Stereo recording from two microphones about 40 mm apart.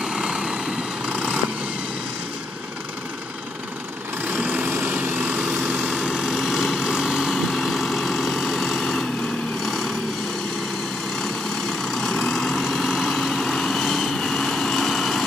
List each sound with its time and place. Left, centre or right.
0.0 s vehicle: centre
4.4 s vehicle: right
4.6 s vehicle: right
5.9 s vehicle: centre
12.2 s vehicle: centre
12.8 s vehicle: centre
13.3 s vehicle: centre
14.0 s vehicle: centre